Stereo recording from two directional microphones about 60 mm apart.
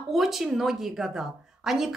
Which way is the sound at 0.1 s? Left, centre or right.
Centre.